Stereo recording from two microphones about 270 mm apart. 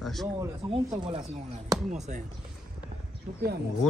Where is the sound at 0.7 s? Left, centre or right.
Centre.